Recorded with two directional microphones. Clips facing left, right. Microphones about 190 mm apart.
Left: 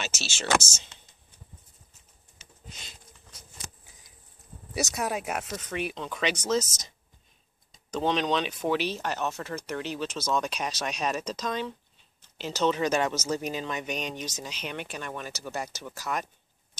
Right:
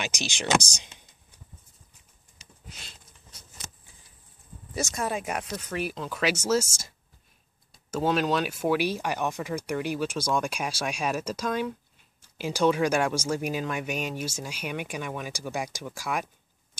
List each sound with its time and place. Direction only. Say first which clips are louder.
0.0 s speech: right 3 dB; 15° right (ahead or behind)
2.7 s a sound: even; centre (ahead or behind)
4.9 s speech: right 2 dB; 5° left (ahead or behind); by 16.3 s 10° right (ahead or behind)